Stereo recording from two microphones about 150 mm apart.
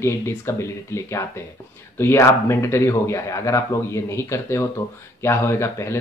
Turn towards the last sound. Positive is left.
turn(degrees=20)  # may be behind; listen again after turning